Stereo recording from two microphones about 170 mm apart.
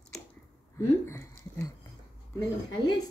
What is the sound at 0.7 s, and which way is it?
Speech, 15° left (ahead or behind).